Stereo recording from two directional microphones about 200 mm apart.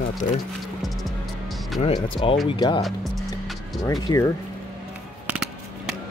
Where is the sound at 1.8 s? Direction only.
25° left (ahead or behind).